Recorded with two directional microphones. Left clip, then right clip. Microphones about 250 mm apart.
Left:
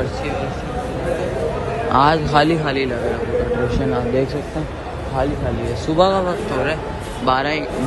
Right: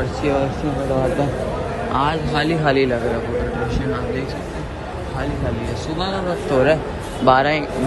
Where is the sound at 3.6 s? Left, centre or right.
Centre.